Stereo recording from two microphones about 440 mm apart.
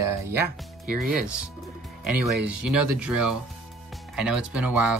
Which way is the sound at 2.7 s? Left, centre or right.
Right.